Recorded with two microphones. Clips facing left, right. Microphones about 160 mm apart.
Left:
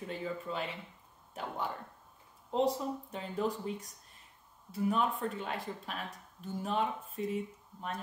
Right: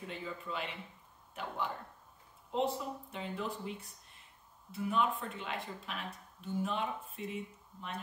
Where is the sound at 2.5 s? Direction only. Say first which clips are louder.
Left 3 dB; 40° left (ahead or behind).